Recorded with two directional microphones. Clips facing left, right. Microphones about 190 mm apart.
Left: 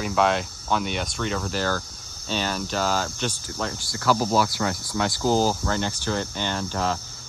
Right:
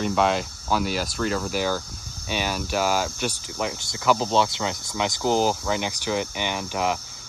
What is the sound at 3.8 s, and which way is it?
Speech, 20° right (ahead or behind).